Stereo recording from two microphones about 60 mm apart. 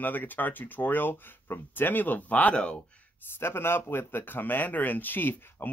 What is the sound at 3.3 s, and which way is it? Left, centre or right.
Speech, left.